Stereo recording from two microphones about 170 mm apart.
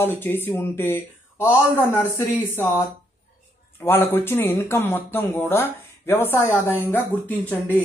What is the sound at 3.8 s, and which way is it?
Speech, 15° left (ahead or behind).